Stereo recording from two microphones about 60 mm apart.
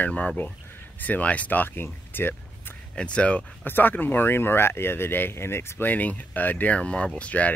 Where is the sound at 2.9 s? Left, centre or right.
Centre.